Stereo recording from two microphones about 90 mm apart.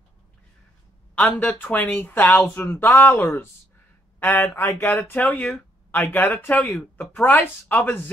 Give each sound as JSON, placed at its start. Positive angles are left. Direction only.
{"t": 1.1, "sound": "speech", "side_deg": 15}